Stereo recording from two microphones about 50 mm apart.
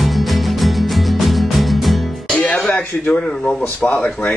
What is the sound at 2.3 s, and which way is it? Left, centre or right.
Music, centre.